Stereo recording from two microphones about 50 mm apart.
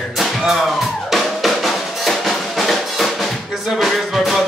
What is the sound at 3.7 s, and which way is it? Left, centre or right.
Music, centre.